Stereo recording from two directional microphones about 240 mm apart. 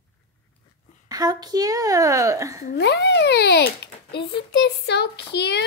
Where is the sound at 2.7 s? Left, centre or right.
Left.